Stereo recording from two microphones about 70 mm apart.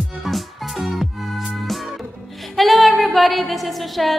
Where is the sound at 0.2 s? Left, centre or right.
Centre.